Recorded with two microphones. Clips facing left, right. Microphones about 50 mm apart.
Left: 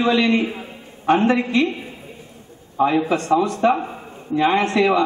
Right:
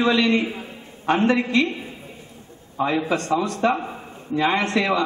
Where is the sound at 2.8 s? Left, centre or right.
Centre.